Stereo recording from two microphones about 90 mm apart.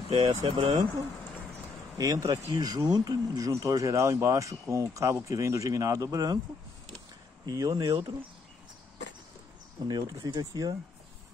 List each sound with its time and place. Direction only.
0.1 s speech: 75° right (ahead or behind)
2.0 s speech: 40° right (ahead or behind)
7.4 s speech: 45° right (ahead or behind)
9.8 s speech: 50° right (ahead or behind)